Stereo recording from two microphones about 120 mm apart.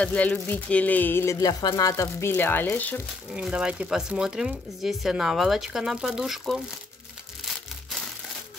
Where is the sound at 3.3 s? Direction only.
5° right (ahead or behind).